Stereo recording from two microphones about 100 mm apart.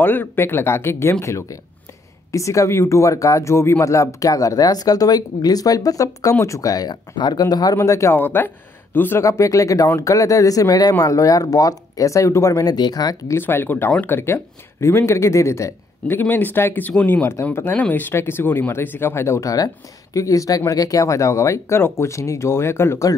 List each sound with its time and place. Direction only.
0.0 s speech: 20° left (ahead or behind)
8.2 s speech: 20° left (ahead or behind)
12.7 s speech: 40° left (ahead or behind)
13.4 s speech: 20° left (ahead or behind)